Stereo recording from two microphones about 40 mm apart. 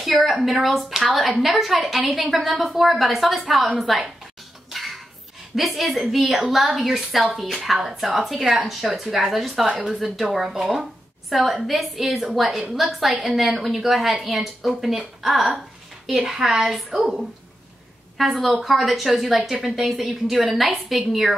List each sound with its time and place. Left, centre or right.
0.0 s a woman's voice: centre
3.7 s a woman's voice: centre
5.6 s a woman's voice: centre
17.0 s a woman's voice: centre
18.1 s a woman's voice: centre